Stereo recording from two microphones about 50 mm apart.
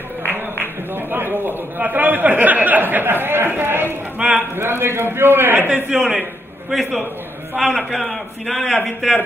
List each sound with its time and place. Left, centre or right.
1.1 s a man's voice: right
5.9 s a man's voice: centre